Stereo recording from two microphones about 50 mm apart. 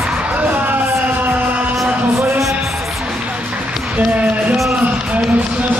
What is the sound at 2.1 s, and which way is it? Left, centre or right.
Music, right.